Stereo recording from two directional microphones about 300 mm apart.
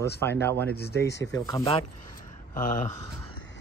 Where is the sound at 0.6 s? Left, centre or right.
Left.